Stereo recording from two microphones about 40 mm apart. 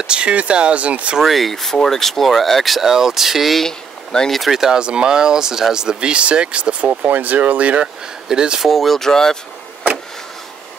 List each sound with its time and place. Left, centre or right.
0.0 s speech: right
1.2 s speech: centre
2.9 s speech: centre
3.6 s a sound: centre
4.5 s speech: centre
4.7 s speech: right
7.0 s speech: right
7.8 s speech: right
8.6 s speech: centre
9.0 s speech: centre